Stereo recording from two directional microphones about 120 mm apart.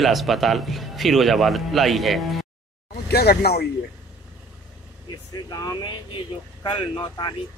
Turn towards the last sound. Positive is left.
turn(degrees=40)  # may be behind; listen again after turning